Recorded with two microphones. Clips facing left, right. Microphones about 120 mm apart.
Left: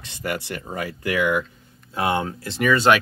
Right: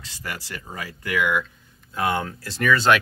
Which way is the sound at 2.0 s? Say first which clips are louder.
Left 2 dB; 25° left (ahead or behind).